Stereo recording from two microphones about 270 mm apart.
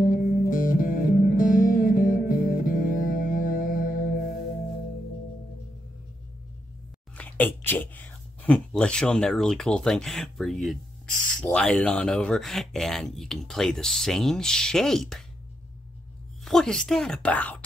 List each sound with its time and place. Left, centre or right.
0.0 s music: left
7.2 s speech: centre
16.4 s speech: centre